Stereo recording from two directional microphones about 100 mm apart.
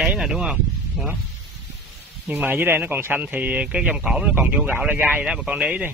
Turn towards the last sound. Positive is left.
turn(degrees=-15)  # may be behind; listen again after turning